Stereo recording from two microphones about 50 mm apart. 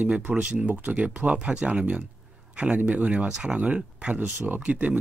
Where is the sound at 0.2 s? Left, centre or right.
Right.